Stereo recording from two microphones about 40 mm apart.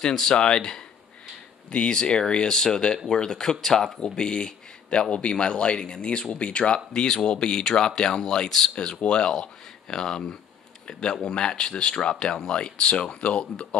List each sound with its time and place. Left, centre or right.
0.0 s speech: centre
4.0 s speech: left